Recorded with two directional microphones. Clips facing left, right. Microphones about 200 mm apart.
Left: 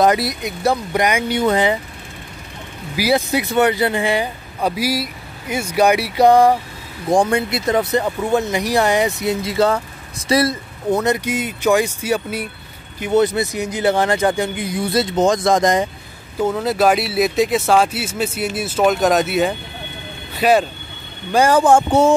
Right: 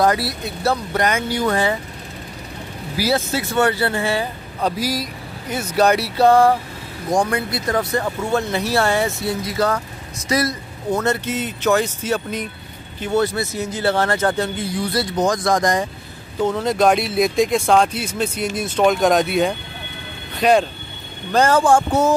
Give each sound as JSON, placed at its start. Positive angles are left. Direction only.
{"t": 0.0, "sound": "speech", "side_deg": 20}
{"t": 3.0, "sound": "speech", "side_deg": 15}
{"t": 7.1, "sound": "speech", "side_deg": 30}
{"t": 11.0, "sound": "speech", "side_deg": 15}
{"t": 16.3, "sound": "speech", "side_deg": 5}